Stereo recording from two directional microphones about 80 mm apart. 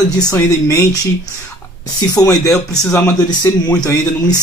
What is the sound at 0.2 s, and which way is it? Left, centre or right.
Speech, left.